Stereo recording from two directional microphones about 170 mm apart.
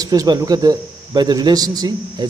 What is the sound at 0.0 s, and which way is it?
Speech, 20° right (ahead or behind).